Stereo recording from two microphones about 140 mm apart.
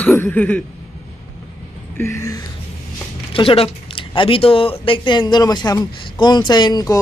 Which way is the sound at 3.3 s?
40° left (ahead or behind).